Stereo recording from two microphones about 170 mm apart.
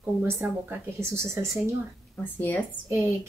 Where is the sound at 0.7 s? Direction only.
15° right (ahead or behind).